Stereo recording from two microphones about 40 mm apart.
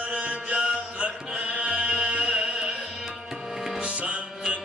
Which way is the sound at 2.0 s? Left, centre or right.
Centre.